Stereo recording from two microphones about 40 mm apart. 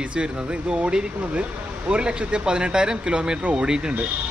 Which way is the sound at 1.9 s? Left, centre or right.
Right.